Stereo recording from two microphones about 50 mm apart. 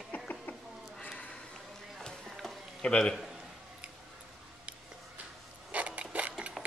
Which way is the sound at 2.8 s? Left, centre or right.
Centre.